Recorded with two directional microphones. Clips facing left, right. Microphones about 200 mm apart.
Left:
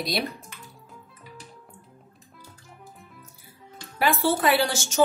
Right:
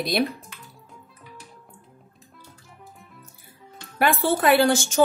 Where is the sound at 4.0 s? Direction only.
55° right (ahead or behind).